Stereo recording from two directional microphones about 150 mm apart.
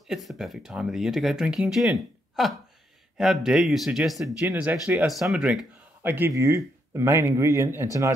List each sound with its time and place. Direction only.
0.1 s speech: centre (ahead or behind); by 8.1 s 20° right (ahead or behind)